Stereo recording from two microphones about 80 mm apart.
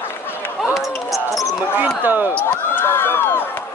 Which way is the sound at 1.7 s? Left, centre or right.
Right.